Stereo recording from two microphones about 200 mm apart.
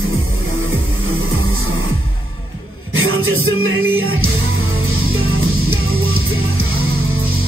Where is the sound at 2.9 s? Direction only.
90° right.